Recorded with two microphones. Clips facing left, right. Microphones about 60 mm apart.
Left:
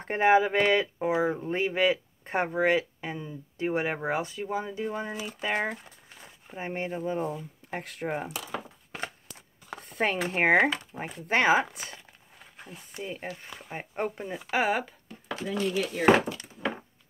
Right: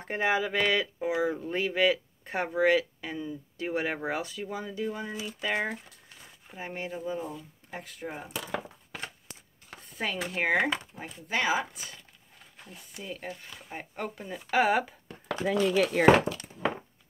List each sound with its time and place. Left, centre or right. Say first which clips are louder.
0.0 s speech: left 6 dB; left
6.6 s speech: left 3 dB; left
7.7 s speech: left 6 dB; left
9.8 s speech: left 5 dB; left
10.9 s speech: left 5 dB; left
11.2 s speech: left 5 dB; left
13.0 s speech: left 2 dB; left
14.6 s speech: right 3 dB; centre
15.4 s speech: right 4 dB; right